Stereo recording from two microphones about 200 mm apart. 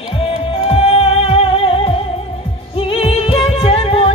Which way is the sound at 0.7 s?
30° left (ahead or behind).